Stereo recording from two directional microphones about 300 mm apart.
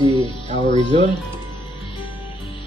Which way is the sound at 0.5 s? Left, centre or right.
Right.